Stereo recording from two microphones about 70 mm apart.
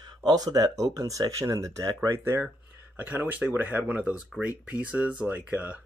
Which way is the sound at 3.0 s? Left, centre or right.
Right.